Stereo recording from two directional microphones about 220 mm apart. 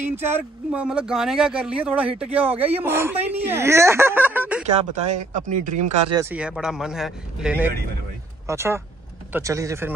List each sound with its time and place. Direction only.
0.0 s speech: 10° right (ahead or behind)
5.0 s a man's voice: 35° right (ahead or behind)
6.3 s speech: 5° right (ahead or behind)